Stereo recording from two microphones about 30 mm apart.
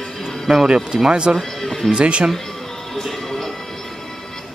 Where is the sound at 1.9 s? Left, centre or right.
Right.